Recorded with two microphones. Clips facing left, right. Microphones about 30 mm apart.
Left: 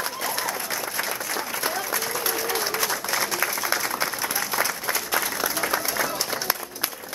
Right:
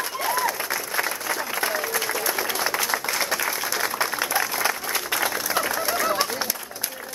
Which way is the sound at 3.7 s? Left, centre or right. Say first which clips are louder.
Right 1 dB; centre.